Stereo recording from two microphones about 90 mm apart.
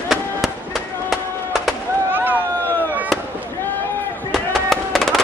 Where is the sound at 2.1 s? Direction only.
20° right (ahead or behind).